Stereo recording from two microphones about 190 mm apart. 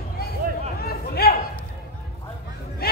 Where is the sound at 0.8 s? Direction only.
55° left (ahead or behind).